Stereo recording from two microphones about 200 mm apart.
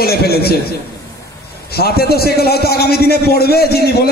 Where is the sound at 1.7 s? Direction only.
50° left (ahead or behind).